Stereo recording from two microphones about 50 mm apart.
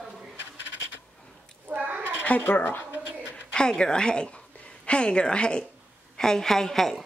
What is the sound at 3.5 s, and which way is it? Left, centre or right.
A woman's voice, centre.